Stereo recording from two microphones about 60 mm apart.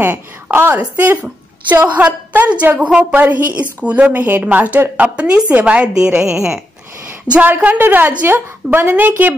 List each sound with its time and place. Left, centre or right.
0.0 s a woman's voice: right
1.2 s a woman's voice: right
3.2 s speech: right
5.1 s a woman's voice: centre
7.3 s a woman's voice: right